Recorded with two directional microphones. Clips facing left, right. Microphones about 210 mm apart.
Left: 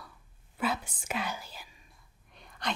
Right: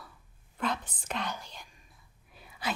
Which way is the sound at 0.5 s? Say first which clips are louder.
Left 1 dB; 5° left (ahead or behind).